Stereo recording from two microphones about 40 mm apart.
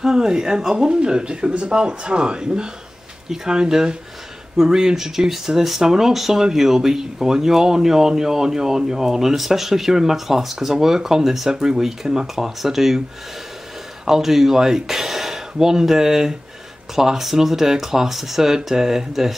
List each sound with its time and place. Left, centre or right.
0.0 s speech: centre
14.0 s speech: centre